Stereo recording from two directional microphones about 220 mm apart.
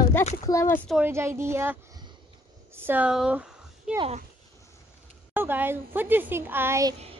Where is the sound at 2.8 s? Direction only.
5° right (ahead or behind).